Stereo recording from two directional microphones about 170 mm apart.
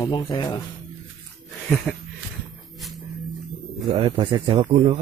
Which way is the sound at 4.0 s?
30° right (ahead or behind).